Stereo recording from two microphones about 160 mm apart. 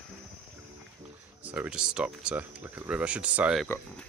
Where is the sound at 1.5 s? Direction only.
5° right (ahead or behind).